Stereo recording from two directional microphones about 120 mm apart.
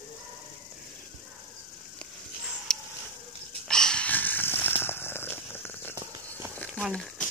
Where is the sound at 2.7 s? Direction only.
5° left (ahead or behind).